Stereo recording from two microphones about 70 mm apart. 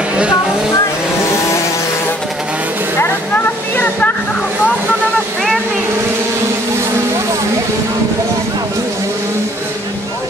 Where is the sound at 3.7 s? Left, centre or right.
Left.